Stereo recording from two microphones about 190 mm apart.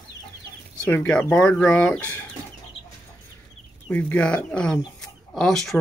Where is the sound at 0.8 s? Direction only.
10° left (ahead or behind).